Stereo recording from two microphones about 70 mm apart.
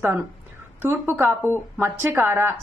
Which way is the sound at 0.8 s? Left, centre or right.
Right.